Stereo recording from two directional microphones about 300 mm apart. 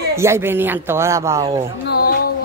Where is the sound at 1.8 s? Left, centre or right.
Left.